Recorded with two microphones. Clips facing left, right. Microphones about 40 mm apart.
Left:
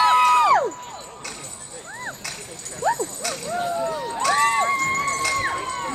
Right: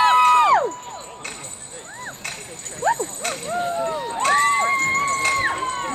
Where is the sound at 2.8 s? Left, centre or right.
Right.